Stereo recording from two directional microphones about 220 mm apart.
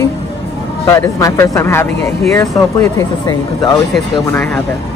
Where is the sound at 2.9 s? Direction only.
15° left (ahead or behind).